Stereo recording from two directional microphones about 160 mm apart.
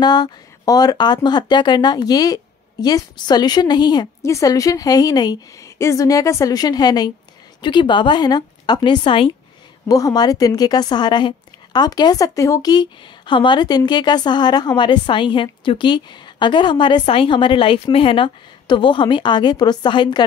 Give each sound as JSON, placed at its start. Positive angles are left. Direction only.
{"t": 0.0, "sound": "a woman's voice", "side_deg": 25}